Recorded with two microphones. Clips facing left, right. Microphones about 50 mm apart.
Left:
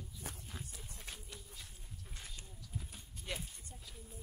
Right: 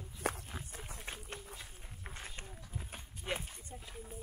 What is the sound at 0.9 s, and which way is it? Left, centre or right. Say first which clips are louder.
Run: right 5 dB; right.